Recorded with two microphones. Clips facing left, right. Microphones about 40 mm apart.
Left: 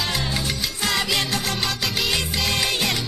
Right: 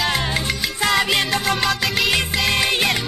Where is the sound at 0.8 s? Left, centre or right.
Right.